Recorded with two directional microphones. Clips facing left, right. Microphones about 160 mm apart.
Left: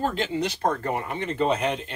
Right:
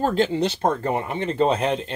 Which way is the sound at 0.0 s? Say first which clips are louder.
Right 5 dB; 40° right (ahead or behind).